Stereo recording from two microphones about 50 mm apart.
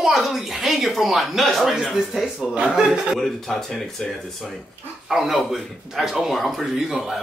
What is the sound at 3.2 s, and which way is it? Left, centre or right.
Speech, centre.